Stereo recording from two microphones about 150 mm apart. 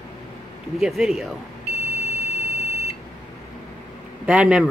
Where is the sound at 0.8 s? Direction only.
Centre (ahead or behind).